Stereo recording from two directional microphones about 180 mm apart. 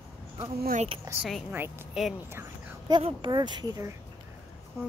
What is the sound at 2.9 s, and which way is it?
Speech, 30° right (ahead or behind).